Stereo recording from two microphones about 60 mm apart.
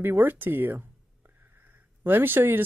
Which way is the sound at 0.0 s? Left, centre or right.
Right.